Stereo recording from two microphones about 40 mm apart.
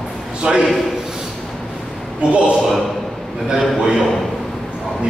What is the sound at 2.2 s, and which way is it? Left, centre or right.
Speech, right.